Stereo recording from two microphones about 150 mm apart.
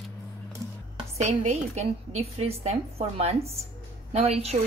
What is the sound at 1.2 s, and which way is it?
A woman's voice, 50° right (ahead or behind).